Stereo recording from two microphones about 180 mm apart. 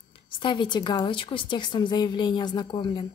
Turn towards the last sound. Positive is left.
turn(degrees=25)  # may be behind; listen again after turning